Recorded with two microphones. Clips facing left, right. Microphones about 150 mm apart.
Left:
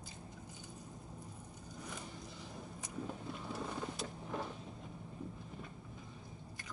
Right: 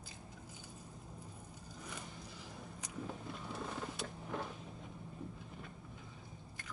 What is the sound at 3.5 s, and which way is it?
Vehicle, 5° left (ahead or behind).